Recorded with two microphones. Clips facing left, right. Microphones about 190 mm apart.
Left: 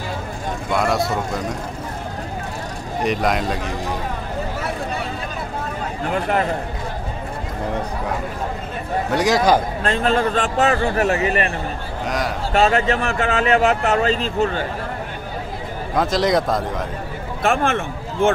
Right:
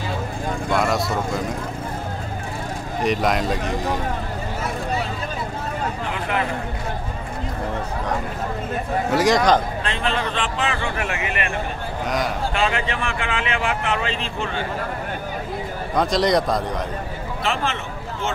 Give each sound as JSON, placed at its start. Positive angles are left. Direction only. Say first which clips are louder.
{"t": 0.7, "sound": "speech", "louder": "left 2 dB", "side_deg": 0}
{"t": 3.0, "sound": "speech", "louder": "left 1 dB", "side_deg": 0}
{"t": 6.1, "sound": "a man's voice", "louder": "left 7 dB", "side_deg": 40}
{"t": 9.1, "sound": "speech", "louder": "left 1 dB", "side_deg": 0}
{"t": 9.8, "sound": "a man's voice", "louder": "left 6 dB", "side_deg": 45}
{"t": 12.5, "sound": "a man's voice", "louder": "left 9 dB", "side_deg": 40}
{"t": 15.9, "sound": "speech", "louder": "left 1 dB", "side_deg": 0}
{"t": 17.4, "sound": "speech", "louder": "left 6 dB", "side_deg": 50}